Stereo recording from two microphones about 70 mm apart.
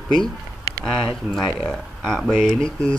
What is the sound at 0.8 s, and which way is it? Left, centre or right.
Speech, centre.